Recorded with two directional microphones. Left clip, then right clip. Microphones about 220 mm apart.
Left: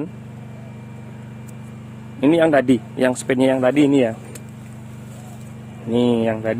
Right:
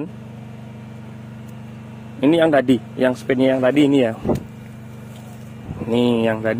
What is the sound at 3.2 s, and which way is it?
Speech, 20° left (ahead or behind).